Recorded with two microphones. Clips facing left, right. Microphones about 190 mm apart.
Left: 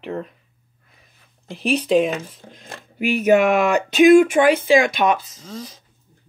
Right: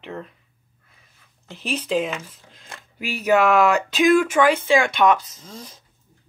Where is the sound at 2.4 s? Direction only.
40° left (ahead or behind).